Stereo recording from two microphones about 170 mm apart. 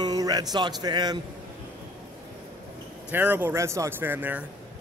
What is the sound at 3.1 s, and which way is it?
Speech, 10° right (ahead or behind).